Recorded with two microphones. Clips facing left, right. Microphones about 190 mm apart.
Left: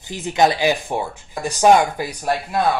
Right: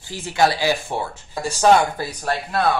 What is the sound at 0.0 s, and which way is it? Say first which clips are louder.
Speech: left 2 dB; 20° left (ahead or behind).